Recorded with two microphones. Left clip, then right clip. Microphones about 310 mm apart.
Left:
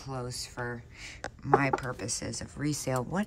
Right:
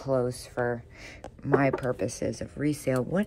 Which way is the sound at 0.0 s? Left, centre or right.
Centre.